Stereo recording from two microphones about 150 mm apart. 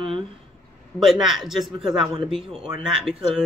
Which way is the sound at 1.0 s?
5° right (ahead or behind).